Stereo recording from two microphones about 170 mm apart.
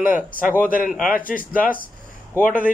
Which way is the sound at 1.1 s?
55° left (ahead or behind).